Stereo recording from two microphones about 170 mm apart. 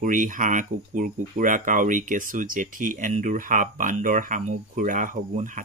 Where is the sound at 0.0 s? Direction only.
50° right (ahead or behind).